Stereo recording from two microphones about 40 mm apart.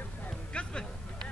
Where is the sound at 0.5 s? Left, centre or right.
Left.